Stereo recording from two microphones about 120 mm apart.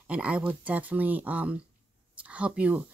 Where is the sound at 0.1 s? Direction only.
10° right (ahead or behind).